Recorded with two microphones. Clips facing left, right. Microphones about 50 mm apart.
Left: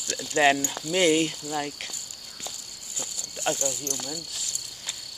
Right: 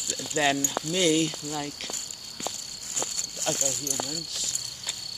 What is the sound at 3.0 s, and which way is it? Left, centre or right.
Cricket, right.